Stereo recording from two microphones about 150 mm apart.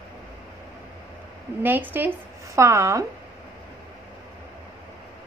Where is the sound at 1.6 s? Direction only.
10° right (ahead or behind).